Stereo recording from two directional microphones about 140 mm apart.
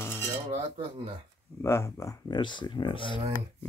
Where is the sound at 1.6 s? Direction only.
20° left (ahead or behind).